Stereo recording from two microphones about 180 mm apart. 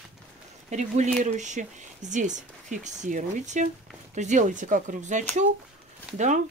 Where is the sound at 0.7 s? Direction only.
40° right (ahead or behind).